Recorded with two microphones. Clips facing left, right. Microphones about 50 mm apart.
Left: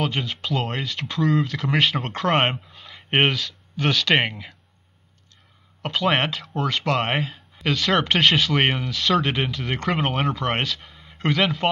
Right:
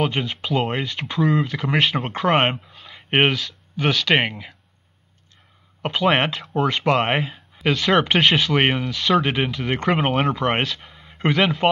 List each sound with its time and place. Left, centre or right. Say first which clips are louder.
0.0 s speech: right 3 dB; centre
5.8 s a sound: right 2 dB; centre
6.0 s speech: right 3 dB; centre